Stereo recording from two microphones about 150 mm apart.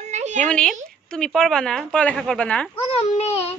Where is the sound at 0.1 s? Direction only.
50° right (ahead or behind).